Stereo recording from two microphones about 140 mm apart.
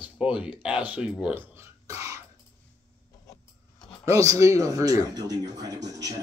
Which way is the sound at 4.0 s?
25° right (ahead or behind).